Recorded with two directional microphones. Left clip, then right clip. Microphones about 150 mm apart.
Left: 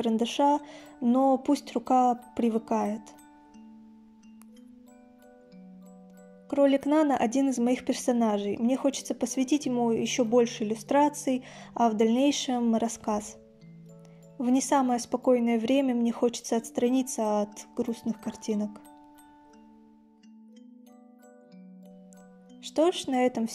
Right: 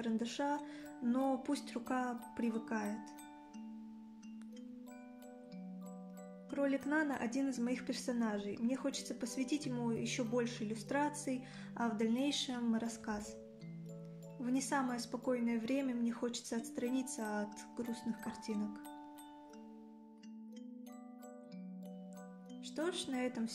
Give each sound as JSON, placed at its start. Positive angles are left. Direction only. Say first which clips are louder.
{"t": 0.0, "sound": "speech", "louder": "left 14 dB", "side_deg": 50}
{"t": 0.7, "sound": "music", "louder": "left 11 dB", "side_deg": 45}
{"t": 1.3, "sound": "speech", "louder": "left 13 dB", "side_deg": 45}
{"t": 6.5, "sound": "speech", "louder": "left 13 dB", "side_deg": 55}
{"t": 14.4, "sound": "speech", "louder": "left 12 dB", "side_deg": 45}
{"t": 18.4, "sound": "speech", "louder": "left 14 dB", "side_deg": 0}
{"t": 22.6, "sound": "speech", "louder": "left 15 dB", "side_deg": 45}